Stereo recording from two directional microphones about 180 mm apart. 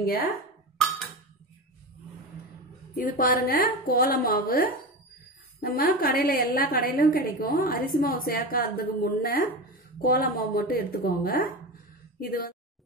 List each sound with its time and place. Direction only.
0.0 s a woman's voice: 55° left (ahead or behind)
3.1 s a woman's voice: 50° left (ahead or behind)